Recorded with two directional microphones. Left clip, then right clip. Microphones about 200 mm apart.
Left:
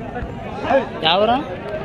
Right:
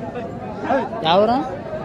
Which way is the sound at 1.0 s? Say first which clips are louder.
Right 3 dB; 10° right (ahead or behind).